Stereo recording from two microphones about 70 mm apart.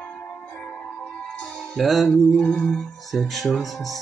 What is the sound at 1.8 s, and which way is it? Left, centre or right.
Speech, centre.